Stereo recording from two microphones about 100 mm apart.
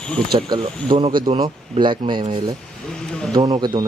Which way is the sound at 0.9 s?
60° right (ahead or behind).